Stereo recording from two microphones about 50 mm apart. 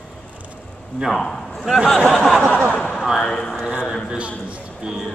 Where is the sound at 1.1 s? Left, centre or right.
Centre.